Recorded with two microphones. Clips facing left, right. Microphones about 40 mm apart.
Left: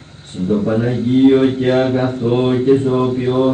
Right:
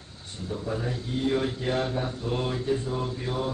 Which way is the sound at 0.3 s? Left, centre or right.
Left.